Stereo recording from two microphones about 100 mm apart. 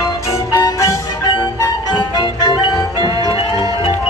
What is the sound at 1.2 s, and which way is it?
Music, 50° left (ahead or behind).